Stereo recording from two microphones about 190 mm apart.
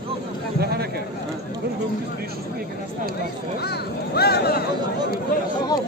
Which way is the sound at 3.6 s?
55° left (ahead or behind).